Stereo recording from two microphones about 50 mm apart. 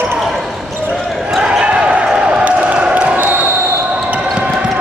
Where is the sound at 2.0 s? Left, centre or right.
Centre.